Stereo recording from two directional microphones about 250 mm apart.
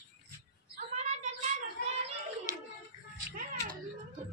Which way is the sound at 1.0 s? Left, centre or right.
Right.